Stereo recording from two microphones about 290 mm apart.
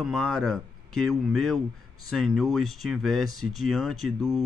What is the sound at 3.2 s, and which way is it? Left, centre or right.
Speech, right.